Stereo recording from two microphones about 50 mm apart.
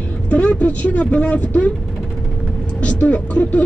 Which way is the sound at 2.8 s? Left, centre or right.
Left.